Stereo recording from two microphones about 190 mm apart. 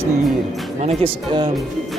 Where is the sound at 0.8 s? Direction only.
30° right (ahead or behind).